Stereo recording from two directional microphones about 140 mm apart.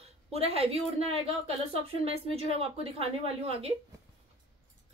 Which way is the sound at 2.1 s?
45° right (ahead or behind).